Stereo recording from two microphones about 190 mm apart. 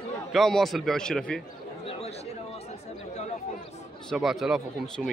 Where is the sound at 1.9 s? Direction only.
35° left (ahead or behind).